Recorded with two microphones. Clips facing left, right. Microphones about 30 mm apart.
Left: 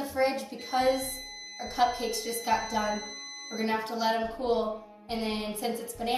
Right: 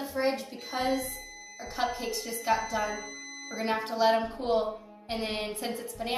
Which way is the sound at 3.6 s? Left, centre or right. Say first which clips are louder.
Right 2 dB; right.